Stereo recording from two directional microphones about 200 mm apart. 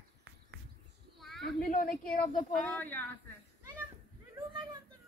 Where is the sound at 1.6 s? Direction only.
45° left (ahead or behind).